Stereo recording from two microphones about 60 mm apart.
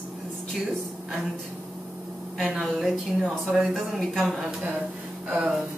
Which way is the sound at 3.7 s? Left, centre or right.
Centre.